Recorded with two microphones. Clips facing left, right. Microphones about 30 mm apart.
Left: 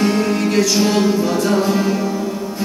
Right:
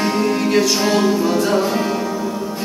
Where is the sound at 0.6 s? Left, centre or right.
Centre.